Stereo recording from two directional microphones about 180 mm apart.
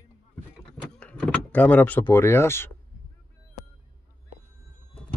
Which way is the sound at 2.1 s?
15° left (ahead or behind).